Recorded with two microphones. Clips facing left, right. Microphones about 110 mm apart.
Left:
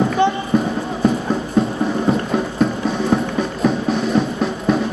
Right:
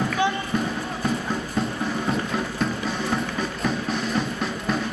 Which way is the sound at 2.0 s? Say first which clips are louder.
Left 7 dB; 5° left (ahead or behind).